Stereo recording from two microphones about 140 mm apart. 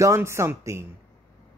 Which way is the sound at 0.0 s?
20° right (ahead or behind).